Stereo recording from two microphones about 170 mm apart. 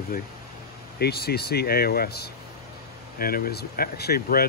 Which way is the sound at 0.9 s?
70° left (ahead or behind).